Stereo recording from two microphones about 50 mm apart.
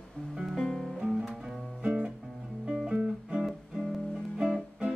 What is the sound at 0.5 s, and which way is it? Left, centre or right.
Music, centre.